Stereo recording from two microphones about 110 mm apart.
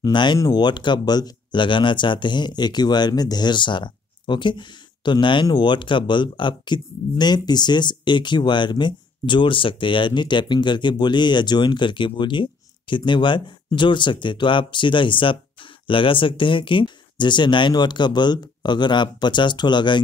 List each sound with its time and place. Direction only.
0.0 s speech: 45° left (ahead or behind)